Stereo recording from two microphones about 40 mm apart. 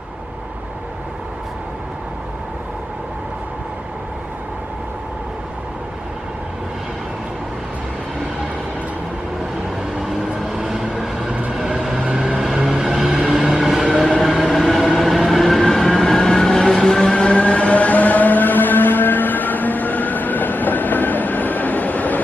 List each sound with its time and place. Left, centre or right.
9.9 s vehicle: centre
11.8 s music: centre
13.1 s a sound: centre
14.2 s train: centre; by 22.2 s left